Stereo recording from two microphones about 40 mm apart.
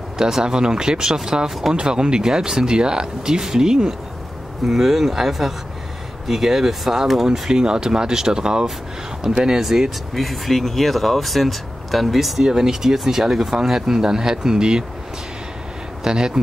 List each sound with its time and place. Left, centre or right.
0.2 s speech: centre
12.4 s speech: centre
16.0 s speech: centre